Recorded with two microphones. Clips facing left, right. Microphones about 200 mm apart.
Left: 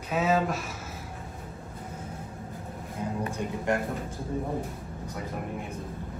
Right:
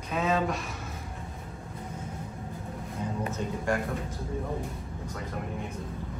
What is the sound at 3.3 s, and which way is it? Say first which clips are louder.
Speech: left 1 dB; 20° left (ahead or behind).